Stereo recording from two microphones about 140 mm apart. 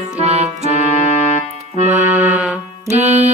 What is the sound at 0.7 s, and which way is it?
Music, 55° left (ahead or behind).